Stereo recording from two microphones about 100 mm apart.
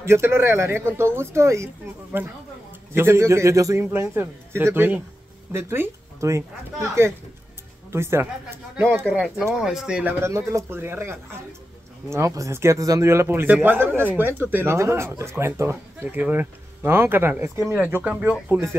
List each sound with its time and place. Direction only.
0.0 s a man's voice: 25° right (ahead or behind)
9.6 s speech: 5° right (ahead or behind)
10.2 s a man's voice: 25° right (ahead or behind)
17.7 s speech: 15° right (ahead or behind)
18.5 s a man's voice: 30° right (ahead or behind)